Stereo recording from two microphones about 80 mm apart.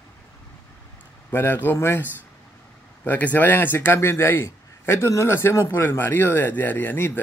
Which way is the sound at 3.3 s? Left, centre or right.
Left.